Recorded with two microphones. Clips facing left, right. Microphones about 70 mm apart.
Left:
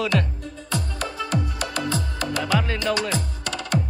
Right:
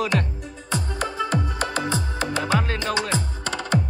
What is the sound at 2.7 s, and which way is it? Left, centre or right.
Speech, right.